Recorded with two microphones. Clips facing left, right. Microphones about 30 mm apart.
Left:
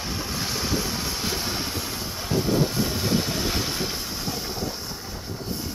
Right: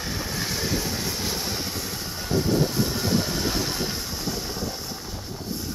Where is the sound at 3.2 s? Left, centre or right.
Centre.